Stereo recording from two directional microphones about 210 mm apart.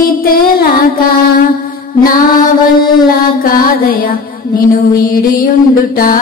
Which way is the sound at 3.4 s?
45° left (ahead or behind).